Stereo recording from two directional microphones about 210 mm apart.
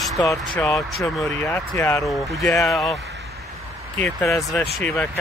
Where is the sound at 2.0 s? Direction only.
Centre (ahead or behind).